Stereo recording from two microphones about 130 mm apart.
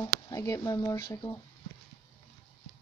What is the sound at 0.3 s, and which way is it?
Speech, 25° left (ahead or behind).